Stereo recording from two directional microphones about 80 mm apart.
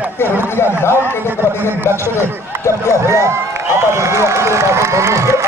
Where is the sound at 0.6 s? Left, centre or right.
Left.